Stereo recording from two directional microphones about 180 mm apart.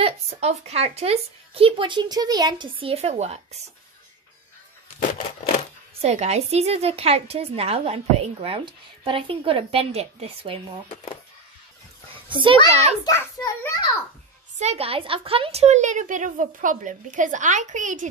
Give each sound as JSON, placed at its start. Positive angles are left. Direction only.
{"t": 0.0, "sound": "a woman's voice", "side_deg": -35}
{"t": 5.9, "sound": "a woman's voice", "side_deg": -35}
{"t": 12.3, "sound": "a child's voice", "side_deg": -25}
{"t": 13.0, "sound": "a child's voice", "side_deg": 15}
{"t": 14.6, "sound": "a woman's voice", "side_deg": -35}